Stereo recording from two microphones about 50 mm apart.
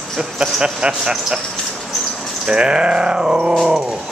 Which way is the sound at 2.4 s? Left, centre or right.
Centre.